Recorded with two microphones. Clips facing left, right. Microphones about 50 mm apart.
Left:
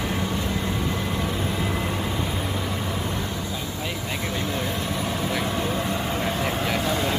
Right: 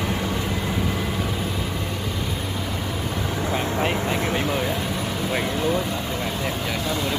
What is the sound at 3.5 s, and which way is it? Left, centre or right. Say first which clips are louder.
Vehicle: right 7 dB; right.